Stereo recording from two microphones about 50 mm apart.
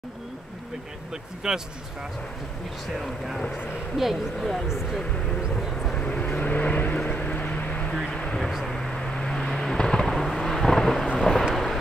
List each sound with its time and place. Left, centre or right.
1.4 s speech: centre
3.9 s speech: centre
4.4 s speech: centre
5.8 s vehicle: centre
6.0 s vehicle: left
8.1 s a sound: centre
8.4 s vehicle: centre